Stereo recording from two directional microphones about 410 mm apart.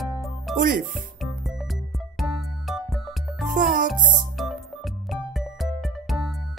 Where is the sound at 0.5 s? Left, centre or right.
Centre.